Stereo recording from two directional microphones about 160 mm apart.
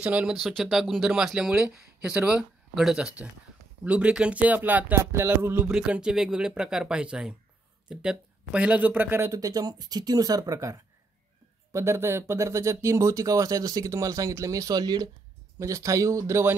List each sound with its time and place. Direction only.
0.0 s speech: 10° right (ahead or behind)